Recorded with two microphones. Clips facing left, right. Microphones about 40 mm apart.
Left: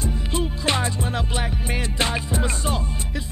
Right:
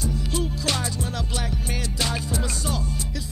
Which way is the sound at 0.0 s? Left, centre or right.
Left.